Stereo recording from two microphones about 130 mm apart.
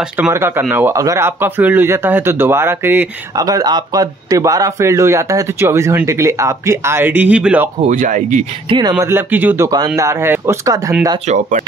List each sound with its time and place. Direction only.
0.3 s speech: 20° right (ahead or behind)
3.3 s speech: 30° right (ahead or behind); by 7.7 s 10° right (ahead or behind)
7.9 s speech: 80° right
8.6 s speech: 40° right (ahead or behind)
9.0 s speech: 15° right (ahead or behind)